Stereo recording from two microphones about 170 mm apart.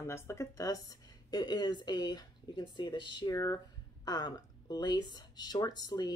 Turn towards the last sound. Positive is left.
turn(degrees=25)  # may be behind; listen again after turning